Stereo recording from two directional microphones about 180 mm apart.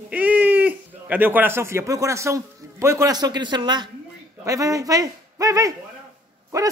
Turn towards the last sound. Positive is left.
turn(degrees=-20)  # may be behind; listen again after turning